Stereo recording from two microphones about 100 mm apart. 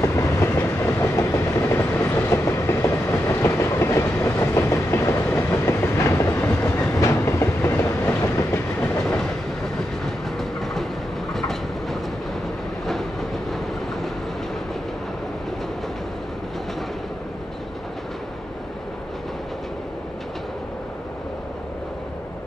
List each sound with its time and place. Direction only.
0.0 s train: 30° left (ahead or behind)
8.8 s train: 5° left (ahead or behind)
10.6 s train: centre (ahead or behind)